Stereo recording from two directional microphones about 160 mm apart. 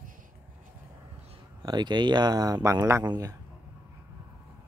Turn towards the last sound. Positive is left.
turn(degrees=-20)  # may be behind; listen again after turning